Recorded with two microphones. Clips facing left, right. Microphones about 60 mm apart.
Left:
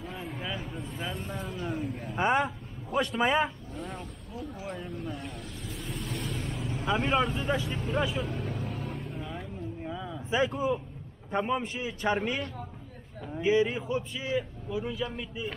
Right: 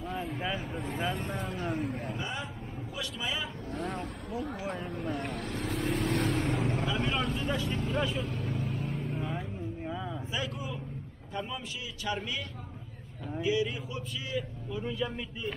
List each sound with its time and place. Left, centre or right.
0.0 s a sound: centre
0.7 s speech: right
0.9 s speech: centre
2.1 s vehicle: left
3.2 s speech: left
4.0 s speech: right
4.8 s vehicle: right
6.9 s speech: centre
8.3 s vehicle: left
9.8 s a sound: centre
10.3 s a man's voice: left
11.3 s a man's voice: left
14.7 s speech: centre